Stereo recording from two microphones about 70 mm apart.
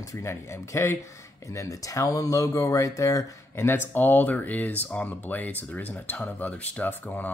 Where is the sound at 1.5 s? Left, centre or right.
Left.